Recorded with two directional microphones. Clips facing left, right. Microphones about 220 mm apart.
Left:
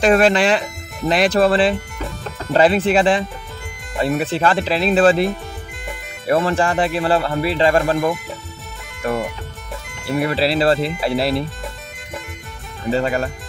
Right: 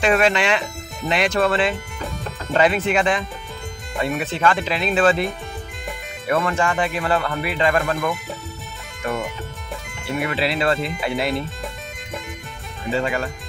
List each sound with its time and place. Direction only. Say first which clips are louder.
0.0 s speech: left 4 dB; 35° left (ahead or behind)
10.2 s speech: left 5 dB; 35° left (ahead or behind)
12.9 s speech: left 3 dB; 40° left (ahead or behind)